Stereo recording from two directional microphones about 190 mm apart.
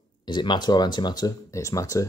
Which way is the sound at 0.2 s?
25° left (ahead or behind).